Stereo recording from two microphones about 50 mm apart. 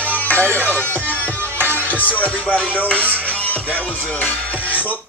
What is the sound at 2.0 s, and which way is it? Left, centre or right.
Music, left.